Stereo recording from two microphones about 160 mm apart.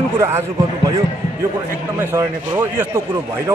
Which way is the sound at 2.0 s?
15° right (ahead or behind).